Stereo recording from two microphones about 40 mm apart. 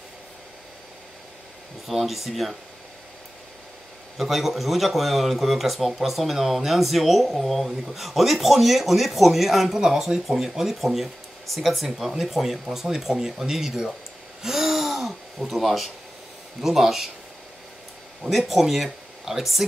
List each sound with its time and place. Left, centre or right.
1.9 s speech: centre
4.2 s speech: centre
9.8 s speech: centre
14.4 s gasp: centre
16.6 s speech: centre
18.2 s speech: centre